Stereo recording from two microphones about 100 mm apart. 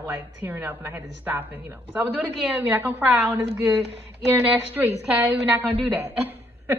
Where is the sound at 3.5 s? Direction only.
5° right (ahead or behind).